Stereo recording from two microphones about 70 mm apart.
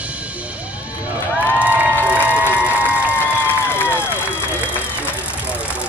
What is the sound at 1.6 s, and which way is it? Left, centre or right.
Crowd, right.